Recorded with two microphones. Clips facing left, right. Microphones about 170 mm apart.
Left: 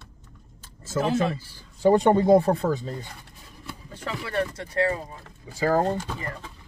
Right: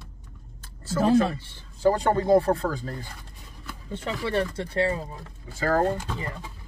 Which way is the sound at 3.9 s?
25° right (ahead or behind).